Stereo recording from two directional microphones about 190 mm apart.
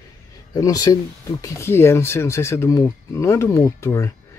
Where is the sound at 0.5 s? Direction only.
20° left (ahead or behind).